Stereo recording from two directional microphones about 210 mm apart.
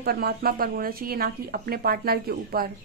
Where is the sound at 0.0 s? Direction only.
50° right (ahead or behind).